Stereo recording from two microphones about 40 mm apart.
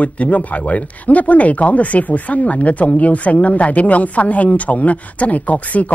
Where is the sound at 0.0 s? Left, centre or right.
Left.